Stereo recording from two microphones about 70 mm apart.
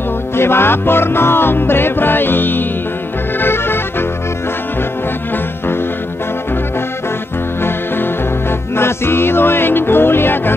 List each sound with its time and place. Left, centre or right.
0.4 s music: left
8.7 s music: left